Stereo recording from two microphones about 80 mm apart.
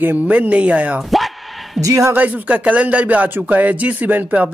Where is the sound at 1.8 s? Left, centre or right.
Right.